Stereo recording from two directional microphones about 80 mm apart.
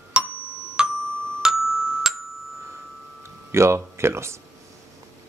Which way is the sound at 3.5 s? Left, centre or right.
Right.